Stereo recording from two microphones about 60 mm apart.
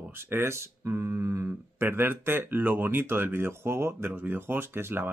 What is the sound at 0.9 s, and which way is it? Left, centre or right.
Speech, right.